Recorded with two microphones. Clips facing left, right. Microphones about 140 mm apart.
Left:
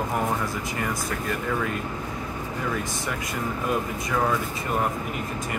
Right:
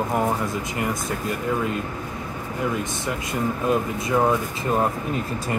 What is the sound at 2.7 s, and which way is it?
Speech, 20° right (ahead or behind).